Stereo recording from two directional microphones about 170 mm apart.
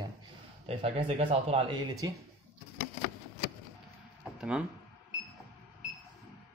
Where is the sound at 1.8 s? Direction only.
20° right (ahead or behind).